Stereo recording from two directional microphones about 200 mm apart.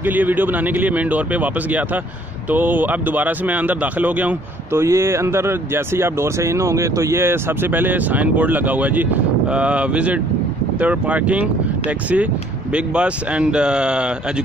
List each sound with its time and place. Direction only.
0.0 s speech: 10° right (ahead or behind)
12.7 s speech: 5° right (ahead or behind)